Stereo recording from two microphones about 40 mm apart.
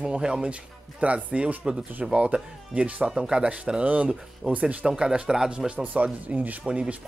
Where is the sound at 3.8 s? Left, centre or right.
Right.